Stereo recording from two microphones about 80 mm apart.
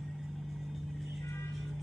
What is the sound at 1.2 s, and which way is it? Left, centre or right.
Music, left.